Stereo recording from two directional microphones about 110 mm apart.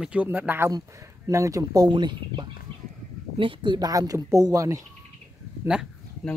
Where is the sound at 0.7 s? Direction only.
30° right (ahead or behind).